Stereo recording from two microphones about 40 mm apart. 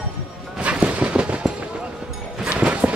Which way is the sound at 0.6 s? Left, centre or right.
Right.